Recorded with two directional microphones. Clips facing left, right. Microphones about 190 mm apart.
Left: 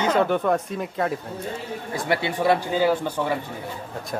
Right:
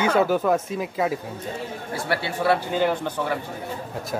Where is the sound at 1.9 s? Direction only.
20° left (ahead or behind).